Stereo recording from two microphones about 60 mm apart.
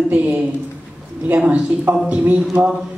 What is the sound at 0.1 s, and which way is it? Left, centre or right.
A woman's voice, right.